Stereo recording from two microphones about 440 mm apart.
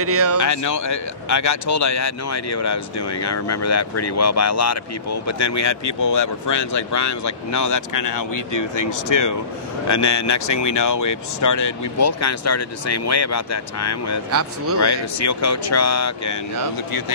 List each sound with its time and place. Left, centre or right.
0.0 s speech: right
0.4 s speech: left